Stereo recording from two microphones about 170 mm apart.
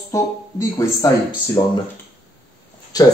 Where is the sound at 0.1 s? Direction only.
20° left (ahead or behind).